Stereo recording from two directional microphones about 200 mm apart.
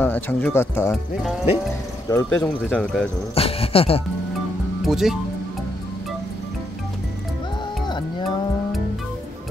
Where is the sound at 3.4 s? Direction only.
30° left (ahead or behind).